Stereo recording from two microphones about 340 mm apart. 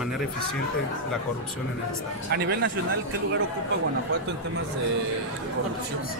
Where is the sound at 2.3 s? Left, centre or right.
Right.